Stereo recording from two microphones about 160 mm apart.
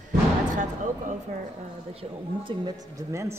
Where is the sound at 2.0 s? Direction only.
30° right (ahead or behind).